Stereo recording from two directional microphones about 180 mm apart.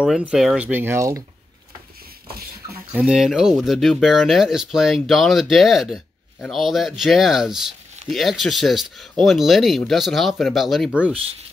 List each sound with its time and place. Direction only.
0.0 s speech: 5° right (ahead or behind)
2.2 s a sound: 60° right (ahead or behind)
2.9 s speech: 5° right (ahead or behind)